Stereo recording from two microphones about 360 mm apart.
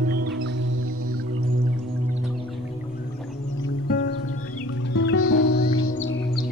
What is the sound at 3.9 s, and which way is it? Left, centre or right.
Music, left.